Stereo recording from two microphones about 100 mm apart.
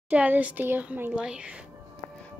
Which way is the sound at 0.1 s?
15° right (ahead or behind).